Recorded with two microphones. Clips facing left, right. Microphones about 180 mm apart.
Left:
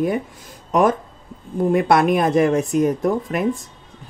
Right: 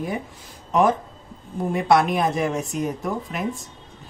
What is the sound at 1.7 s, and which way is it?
Speech, 55° left (ahead or behind).